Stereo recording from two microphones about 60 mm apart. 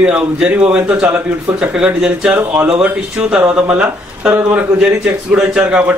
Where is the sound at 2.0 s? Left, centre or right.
Centre.